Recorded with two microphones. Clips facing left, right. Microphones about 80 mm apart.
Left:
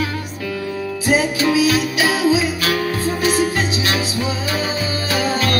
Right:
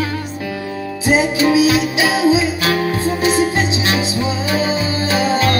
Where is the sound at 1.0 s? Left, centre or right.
Right.